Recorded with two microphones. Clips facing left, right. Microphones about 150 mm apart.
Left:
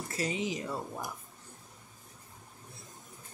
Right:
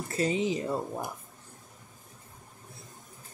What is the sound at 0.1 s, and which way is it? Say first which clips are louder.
Speech: right 6 dB; 30° right (ahead or behind).